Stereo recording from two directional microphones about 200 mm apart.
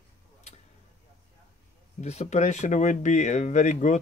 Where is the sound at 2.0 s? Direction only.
35° left (ahead or behind).